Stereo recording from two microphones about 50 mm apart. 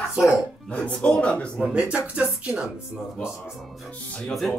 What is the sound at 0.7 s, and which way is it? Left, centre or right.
Speech, left.